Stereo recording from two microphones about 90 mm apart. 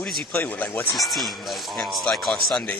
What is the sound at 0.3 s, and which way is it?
Speech, 20° left (ahead or behind).